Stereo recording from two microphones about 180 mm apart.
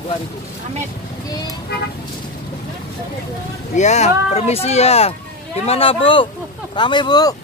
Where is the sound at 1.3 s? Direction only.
20° left (ahead or behind).